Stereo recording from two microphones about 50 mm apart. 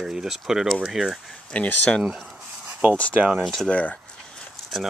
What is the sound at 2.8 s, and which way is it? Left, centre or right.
Speech, right.